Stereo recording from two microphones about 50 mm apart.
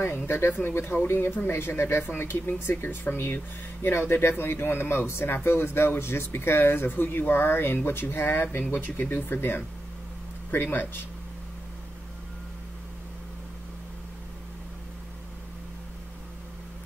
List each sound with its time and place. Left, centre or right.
0.0 s speech: left